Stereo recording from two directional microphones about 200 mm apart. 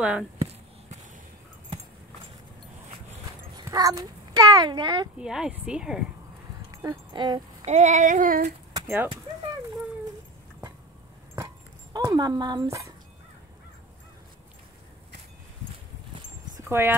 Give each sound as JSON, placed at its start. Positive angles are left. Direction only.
{"t": 0.0, "sound": "speech", "side_deg": -5}
{"t": 3.5, "sound": "a child's voice", "side_deg": -20}
{"t": 5.2, "sound": "speech", "side_deg": -5}
{"t": 6.8, "sound": "speech", "side_deg": -20}
{"t": 7.6, "sound": "a sound", "side_deg": -35}
{"t": 8.7, "sound": "speech", "side_deg": -10}
{"t": 11.9, "sound": "speech", "side_deg": -20}
{"t": 16.6, "sound": "speech", "side_deg": -10}